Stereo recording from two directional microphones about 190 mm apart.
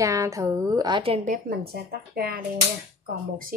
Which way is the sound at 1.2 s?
50° right (ahead or behind).